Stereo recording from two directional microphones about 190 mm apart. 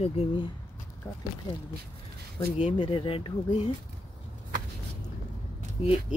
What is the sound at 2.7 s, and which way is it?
Speech, 25° left (ahead or behind).